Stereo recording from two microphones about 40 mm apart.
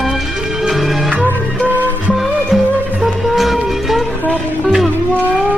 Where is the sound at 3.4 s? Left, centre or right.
Centre.